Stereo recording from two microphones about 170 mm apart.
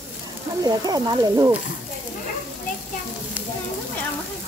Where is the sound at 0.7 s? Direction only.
20° right (ahead or behind).